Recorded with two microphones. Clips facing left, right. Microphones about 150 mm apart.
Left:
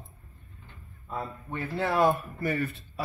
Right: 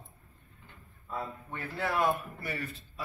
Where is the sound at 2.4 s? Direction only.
50° left (ahead or behind).